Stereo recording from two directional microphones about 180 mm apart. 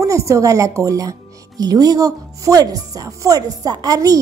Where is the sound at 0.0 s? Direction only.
15° right (ahead or behind).